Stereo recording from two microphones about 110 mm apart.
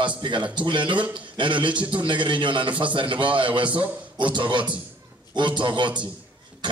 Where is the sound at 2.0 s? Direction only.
45° right (ahead or behind).